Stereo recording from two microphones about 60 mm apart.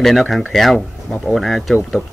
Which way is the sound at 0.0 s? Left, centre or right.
Centre.